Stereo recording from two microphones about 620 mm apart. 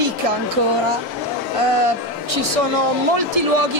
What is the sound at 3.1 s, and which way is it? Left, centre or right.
Speech, right.